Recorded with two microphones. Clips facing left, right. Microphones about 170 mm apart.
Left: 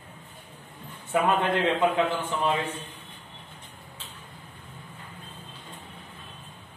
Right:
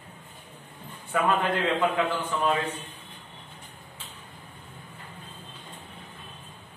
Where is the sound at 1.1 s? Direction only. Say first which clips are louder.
Left 1 dB; 25° left (ahead or behind).